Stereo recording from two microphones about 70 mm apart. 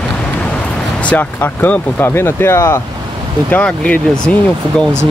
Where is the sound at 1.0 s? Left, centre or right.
Left.